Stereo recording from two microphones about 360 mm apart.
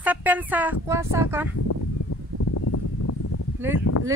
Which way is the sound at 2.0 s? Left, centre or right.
Left.